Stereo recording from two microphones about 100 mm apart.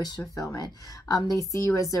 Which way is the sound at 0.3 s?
35° left (ahead or behind).